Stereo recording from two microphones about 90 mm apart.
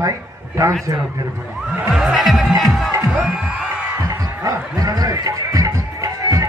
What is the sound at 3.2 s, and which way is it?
Music, 15° right (ahead or behind).